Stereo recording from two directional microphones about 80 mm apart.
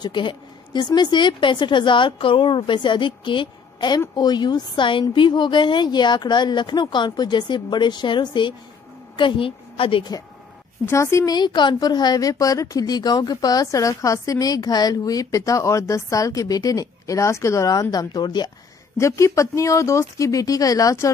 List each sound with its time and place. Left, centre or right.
0.0 s a woman's voice: left
4.1 s speech: left
9.1 s a woman's voice: left
10.9 s speech: left
11.2 s a woman's voice: left
18.9 s speech: left